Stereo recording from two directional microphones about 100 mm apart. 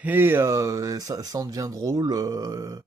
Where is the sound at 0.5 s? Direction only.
35° right (ahead or behind).